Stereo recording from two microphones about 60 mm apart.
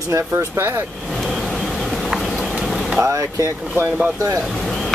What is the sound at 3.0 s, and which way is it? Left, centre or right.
Speech, right.